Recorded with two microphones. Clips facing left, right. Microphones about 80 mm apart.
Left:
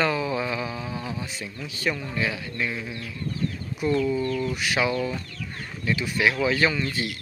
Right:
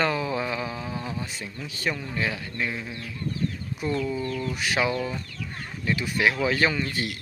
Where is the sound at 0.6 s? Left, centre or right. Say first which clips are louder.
Even; centre.